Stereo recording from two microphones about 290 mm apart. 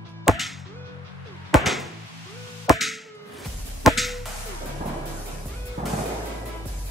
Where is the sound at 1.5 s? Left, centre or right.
Centre.